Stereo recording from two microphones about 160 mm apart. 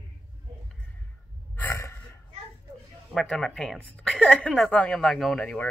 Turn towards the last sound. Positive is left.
turn(degrees=5)  # may be behind; listen again after turning